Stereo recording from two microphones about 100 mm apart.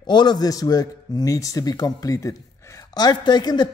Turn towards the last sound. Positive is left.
turn(degrees=45)  # may be behind; listen again after turning